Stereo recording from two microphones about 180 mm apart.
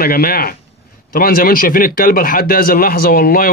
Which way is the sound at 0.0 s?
55° left (ahead or behind).